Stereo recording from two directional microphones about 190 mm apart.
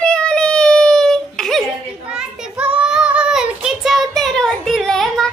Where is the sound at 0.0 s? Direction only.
5° left (ahead or behind).